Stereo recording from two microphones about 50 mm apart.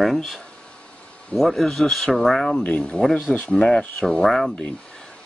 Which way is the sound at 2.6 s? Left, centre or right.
Left.